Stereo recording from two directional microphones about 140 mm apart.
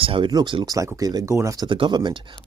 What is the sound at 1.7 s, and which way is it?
Speech, 35° right (ahead or behind).